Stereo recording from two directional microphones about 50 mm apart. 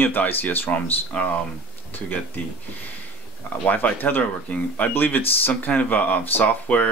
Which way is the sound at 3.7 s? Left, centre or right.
Left.